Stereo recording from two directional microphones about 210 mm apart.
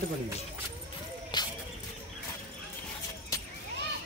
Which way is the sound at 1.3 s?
20° left (ahead or behind).